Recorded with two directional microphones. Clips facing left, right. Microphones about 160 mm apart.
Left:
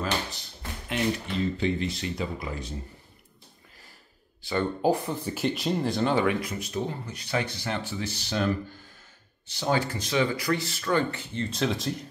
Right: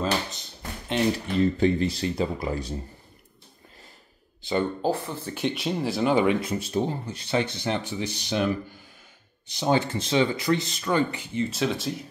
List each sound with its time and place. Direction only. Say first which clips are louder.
0.0 s tap: right 3 dB; 25° right (ahead or behind)
1.2 s speech: right 6 dB; 40° right (ahead or behind)
4.4 s a sound: right 3 dB; 20° right (ahead or behind)
4.8 s speech: left 2 dB; 15° left (ahead or behind)
5.3 s speech: right 1 dB; centre (ahead or behind)
6.1 s speech: right 3 dB; 20° right (ahead or behind)
11.5 s speech: right 1 dB; centre (ahead or behind)